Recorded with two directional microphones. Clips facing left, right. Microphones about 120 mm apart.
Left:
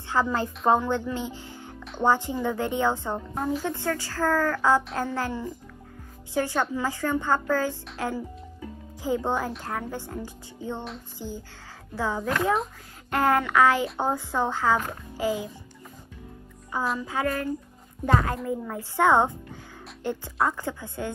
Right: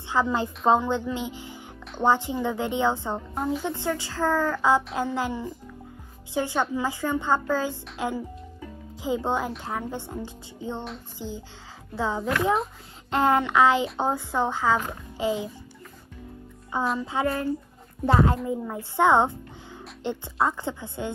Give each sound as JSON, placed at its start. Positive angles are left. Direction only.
{"t": 0.1, "sound": "a woman's voice", "side_deg": -15}
{"t": 9.0, "sound": "a woman's voice", "side_deg": -15}
{"t": 11.1, "sound": "music", "side_deg": -15}
{"t": 11.9, "sound": "a woman's voice", "side_deg": -15}
{"t": 17.0, "sound": "speech", "side_deg": -20}